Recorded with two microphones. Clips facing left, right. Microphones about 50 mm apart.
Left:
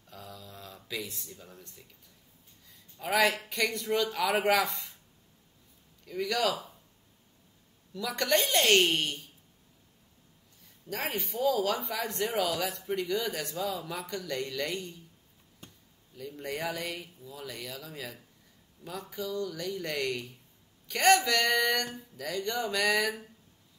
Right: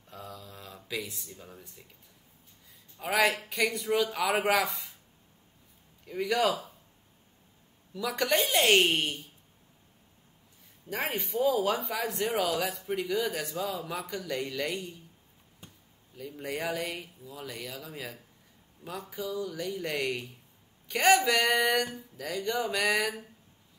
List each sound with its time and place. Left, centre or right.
0.1 s a sound: centre
3.0 s speech: centre
6.0 s speech: centre
7.9 s speech: centre
10.9 s a woman's voice: centre
11.8 s speech: centre
15.6 s a sound: centre
16.2 s speech: centre